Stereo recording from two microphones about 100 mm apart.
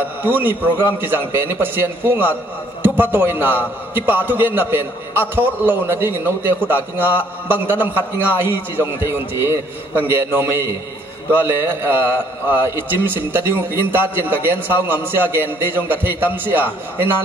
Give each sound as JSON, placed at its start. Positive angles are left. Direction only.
{"t": 0.2, "sound": "a man's voice", "side_deg": -20}